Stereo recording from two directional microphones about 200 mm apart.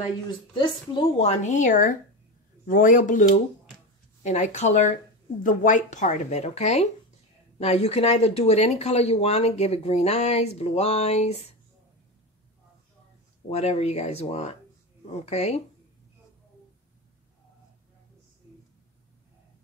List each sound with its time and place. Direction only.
0.6 s speech: 25° left (ahead or behind)
13.5 s speech: 30° left (ahead or behind)